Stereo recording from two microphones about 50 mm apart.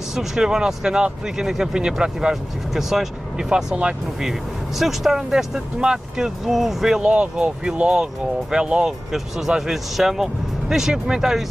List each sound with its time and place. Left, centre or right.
0.1 s speech: centre
7.1 s speech: right
9.6 s speech: centre